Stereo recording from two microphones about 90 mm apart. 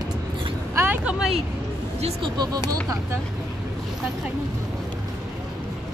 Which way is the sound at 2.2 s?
50° right (ahead or behind).